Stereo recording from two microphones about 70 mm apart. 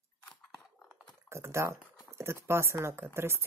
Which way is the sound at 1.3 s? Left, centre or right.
Right.